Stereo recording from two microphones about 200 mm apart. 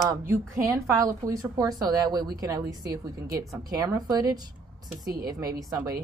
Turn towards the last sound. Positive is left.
turn(degrees=-15)  # may be behind; listen again after turning